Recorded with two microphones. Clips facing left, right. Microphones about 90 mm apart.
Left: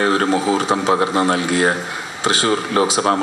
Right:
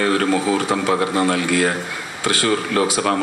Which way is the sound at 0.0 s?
25° left (ahead or behind).